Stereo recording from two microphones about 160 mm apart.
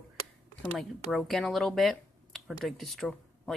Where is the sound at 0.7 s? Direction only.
Centre (ahead or behind).